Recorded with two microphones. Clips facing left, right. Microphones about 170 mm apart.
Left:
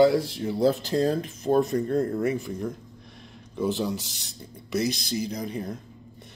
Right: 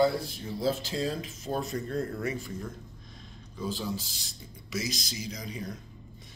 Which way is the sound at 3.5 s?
70° left (ahead or behind).